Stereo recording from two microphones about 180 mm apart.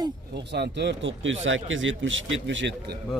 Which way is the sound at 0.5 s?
70° right (ahead or behind).